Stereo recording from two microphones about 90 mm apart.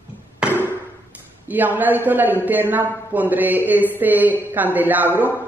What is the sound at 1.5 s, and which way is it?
A man's voice, 20° right (ahead or behind).